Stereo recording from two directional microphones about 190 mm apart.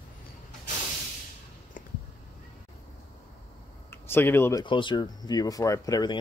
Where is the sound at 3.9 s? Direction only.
10° left (ahead or behind).